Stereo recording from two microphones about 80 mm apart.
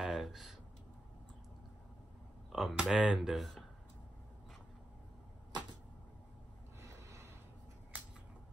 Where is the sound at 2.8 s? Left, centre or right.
Centre.